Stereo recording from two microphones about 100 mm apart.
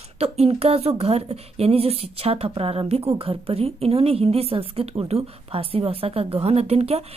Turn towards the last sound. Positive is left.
turn(degrees=-90)